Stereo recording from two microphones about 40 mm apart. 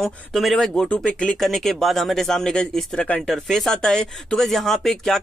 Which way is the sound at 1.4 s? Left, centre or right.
Centre.